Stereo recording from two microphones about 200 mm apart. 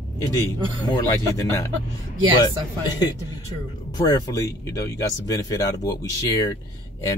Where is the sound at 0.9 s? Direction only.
15° left (ahead or behind).